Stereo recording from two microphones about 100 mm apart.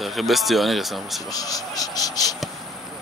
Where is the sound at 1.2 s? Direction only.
40° left (ahead or behind).